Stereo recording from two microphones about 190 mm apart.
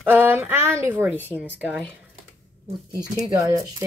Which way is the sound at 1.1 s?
10° left (ahead or behind).